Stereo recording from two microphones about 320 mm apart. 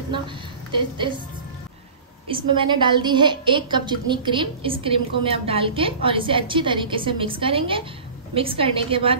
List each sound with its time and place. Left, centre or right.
0.7 s a woman's voice: centre
2.2 s a woman's voice: centre